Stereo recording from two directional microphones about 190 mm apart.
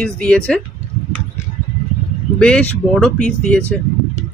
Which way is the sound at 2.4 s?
5° left (ahead or behind).